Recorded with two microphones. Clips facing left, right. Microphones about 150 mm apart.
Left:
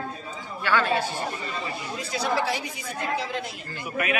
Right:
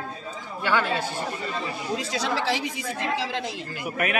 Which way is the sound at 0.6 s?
15° right (ahead or behind).